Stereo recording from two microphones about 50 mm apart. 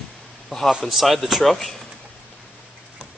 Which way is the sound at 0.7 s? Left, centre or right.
Centre.